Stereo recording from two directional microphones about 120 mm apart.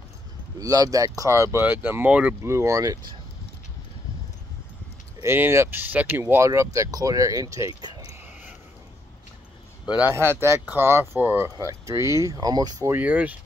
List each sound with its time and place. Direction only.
0.6 s speech: 30° right (ahead or behind); by 2.3 s 10° right (ahead or behind)
2.4 s speech: 25° right (ahead or behind)
5.2 s speech: 20° right (ahead or behind)
7.9 s a sound: 60° left (ahead or behind)
9.9 s speech: 20° right (ahead or behind)
12.9 s speech: 10° right (ahead or behind)